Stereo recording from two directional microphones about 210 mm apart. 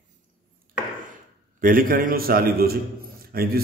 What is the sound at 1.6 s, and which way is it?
A man's voice, 40° right (ahead or behind).